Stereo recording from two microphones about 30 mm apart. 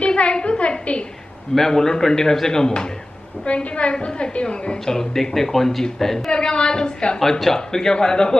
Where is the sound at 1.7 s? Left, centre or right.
Centre.